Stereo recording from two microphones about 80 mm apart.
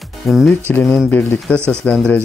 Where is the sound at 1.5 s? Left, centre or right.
Right.